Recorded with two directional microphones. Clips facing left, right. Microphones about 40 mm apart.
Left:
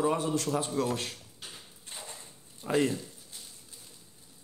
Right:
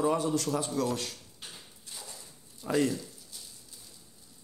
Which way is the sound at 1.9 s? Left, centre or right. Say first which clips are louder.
Left 2 dB; left.